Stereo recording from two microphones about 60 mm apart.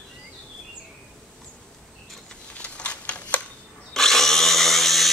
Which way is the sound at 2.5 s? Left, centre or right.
Left.